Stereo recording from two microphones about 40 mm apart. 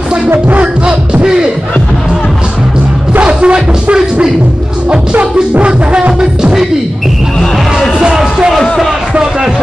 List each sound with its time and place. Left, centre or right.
0.8 s music: right
3.2 s music: right